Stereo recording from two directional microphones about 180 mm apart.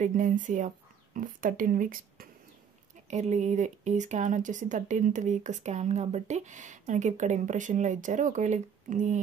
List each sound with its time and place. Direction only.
0.0 s speech: 45° right (ahead or behind)
3.1 s speech: 40° right (ahead or behind)